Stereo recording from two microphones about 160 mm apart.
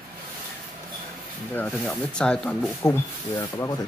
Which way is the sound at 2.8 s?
15° left (ahead or behind).